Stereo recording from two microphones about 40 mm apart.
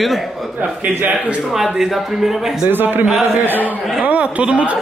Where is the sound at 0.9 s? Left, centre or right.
Right.